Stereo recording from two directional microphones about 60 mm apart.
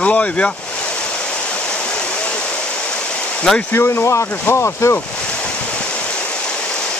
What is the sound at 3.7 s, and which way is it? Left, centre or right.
Speech, left.